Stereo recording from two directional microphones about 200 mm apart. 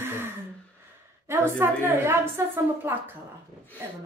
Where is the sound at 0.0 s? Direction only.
10° right (ahead or behind).